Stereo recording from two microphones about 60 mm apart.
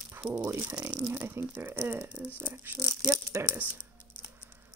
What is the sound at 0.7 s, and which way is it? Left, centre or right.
Speech, centre.